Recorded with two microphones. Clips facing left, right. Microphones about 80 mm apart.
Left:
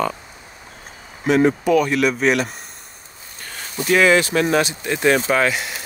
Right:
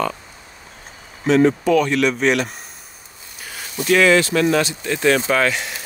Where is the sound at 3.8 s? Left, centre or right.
Centre.